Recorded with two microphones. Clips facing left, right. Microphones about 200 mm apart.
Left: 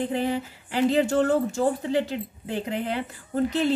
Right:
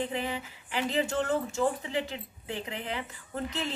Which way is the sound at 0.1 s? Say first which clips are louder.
Left 8 dB; 40° left (ahead or behind).